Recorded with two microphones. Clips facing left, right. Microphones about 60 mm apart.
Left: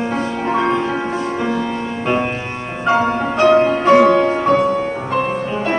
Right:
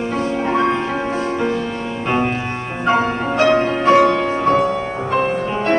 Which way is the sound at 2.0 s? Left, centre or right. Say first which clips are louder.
Right 1 dB; centre.